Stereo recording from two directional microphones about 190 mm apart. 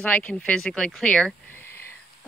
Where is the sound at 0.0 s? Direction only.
5° left (ahead or behind).